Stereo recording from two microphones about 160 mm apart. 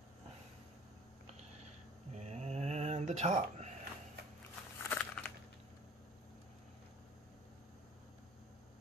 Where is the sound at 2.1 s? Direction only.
45° right (ahead or behind).